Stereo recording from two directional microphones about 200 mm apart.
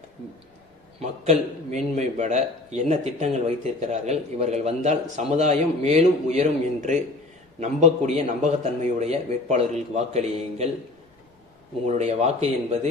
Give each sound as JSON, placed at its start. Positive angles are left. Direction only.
{"t": 0.9, "sound": "a man's voice", "side_deg": -35}
{"t": 11.8, "sound": "a man's voice", "side_deg": -35}